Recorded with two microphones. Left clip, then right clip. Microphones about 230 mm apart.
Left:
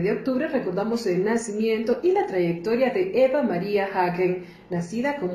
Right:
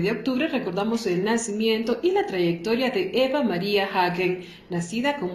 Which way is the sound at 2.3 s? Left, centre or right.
Right.